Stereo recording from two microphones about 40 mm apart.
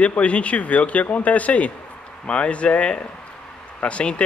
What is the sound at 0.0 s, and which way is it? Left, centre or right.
Speech, left.